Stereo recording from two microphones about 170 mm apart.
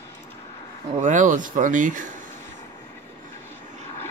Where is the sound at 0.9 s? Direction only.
45° right (ahead or behind).